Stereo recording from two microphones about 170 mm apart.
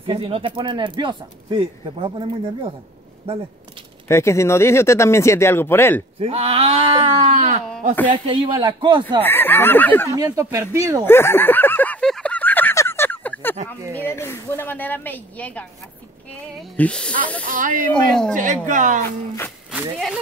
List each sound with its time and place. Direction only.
0.0 s speech: 30° right (ahead or behind)
4.1 s speech: 15° left (ahead or behind)
6.1 s a sound: 35° right (ahead or behind)
7.7 s speech: 10° left (ahead or behind)
8.3 s speech: 30° right (ahead or behind)
9.2 s speech: 10° left (ahead or behind)
10.0 s speech: 20° right (ahead or behind)
11.1 s a sound: 15° left (ahead or behind)
13.9 s speech: 15° left (ahead or behind)
17.5 s speech: 50° right (ahead or behind)
17.8 s speech: 5° left (ahead or behind)
18.3 s speech: 50° right (ahead or behind)
19.0 s speech: 15° left (ahead or behind)
19.7 s speech: 5° right (ahead or behind)